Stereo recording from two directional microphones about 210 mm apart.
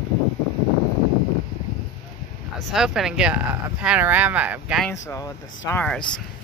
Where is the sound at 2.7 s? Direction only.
Centre (ahead or behind).